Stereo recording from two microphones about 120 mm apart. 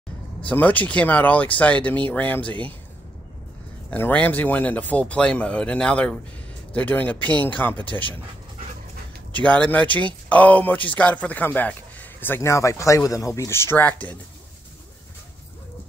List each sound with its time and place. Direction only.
0.5 s speech: 15° left (ahead or behind)
3.9 s speech: 15° left (ahead or behind)
9.3 s a man's voice: 10° left (ahead or behind)